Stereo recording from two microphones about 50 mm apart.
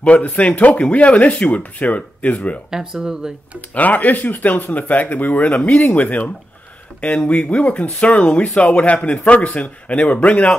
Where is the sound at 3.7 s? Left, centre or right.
Left.